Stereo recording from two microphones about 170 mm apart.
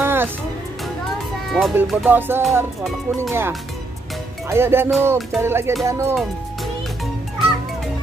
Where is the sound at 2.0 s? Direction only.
10° right (ahead or behind).